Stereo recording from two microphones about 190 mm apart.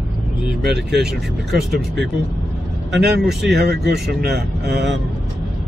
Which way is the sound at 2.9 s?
60° right (ahead or behind).